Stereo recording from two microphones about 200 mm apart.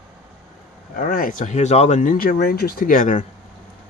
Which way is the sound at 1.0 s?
45° left (ahead or behind).